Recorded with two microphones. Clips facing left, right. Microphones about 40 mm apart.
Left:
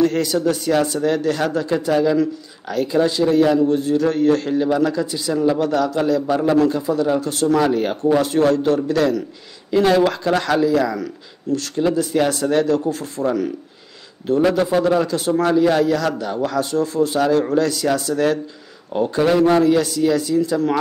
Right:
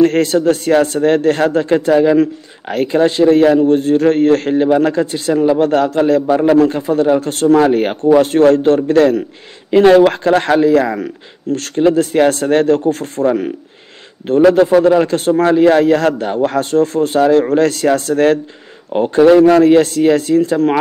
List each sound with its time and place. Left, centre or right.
0.0 s a man's voice: right
14.5 s a man's voice: right